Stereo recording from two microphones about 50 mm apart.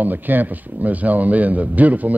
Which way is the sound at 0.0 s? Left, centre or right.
Right.